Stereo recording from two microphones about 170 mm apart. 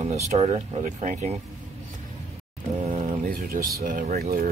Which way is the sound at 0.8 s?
45° right (ahead or behind).